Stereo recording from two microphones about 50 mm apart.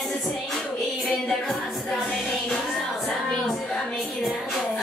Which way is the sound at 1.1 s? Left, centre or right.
Centre.